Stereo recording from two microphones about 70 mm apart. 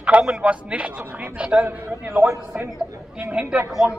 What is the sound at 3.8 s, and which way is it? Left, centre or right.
Speech, right.